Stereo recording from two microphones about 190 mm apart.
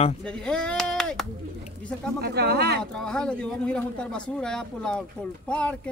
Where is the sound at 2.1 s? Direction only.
60° right (ahead or behind).